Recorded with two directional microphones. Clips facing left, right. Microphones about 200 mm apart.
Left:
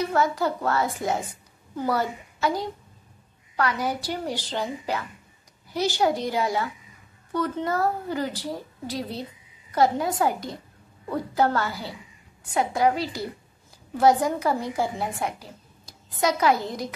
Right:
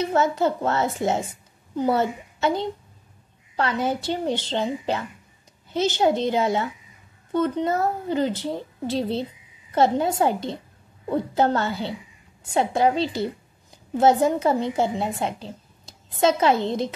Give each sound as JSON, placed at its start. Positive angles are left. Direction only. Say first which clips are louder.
{"t": 0.0, "sound": "a woman's voice", "louder": "right 3 dB", "side_deg": -25}